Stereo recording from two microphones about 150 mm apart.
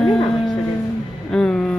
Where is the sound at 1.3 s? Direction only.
5° left (ahead or behind).